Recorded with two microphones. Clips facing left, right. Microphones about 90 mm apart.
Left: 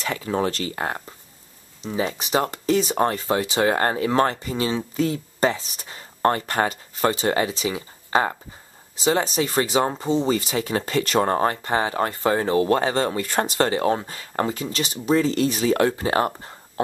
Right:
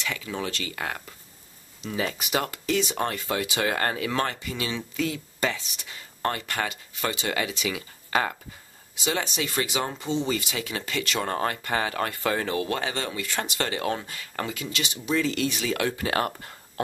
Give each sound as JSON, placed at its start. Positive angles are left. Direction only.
{"t": 0.0, "sound": "speech", "side_deg": 40}